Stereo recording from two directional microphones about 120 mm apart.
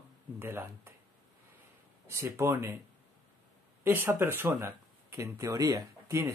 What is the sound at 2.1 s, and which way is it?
Speech, 25° right (ahead or behind).